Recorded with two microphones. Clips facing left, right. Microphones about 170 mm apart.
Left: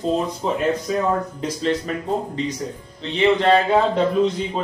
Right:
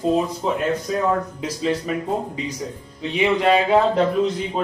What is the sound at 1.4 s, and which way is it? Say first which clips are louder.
Speech: left 1 dB; 5° right (ahead or behind).